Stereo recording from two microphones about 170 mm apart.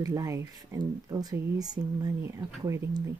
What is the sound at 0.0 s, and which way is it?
Speech, 20° right (ahead or behind).